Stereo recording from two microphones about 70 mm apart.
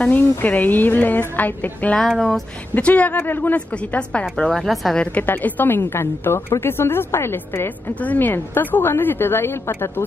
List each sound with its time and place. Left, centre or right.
0.2 s speech: left
2.0 s a woman's voice: centre
2.7 s speech: left
3.5 s a woman's voice: centre
4.5 s a woman's voice: centre
4.9 s a woman's voice: centre
7.9 s a woman's voice: left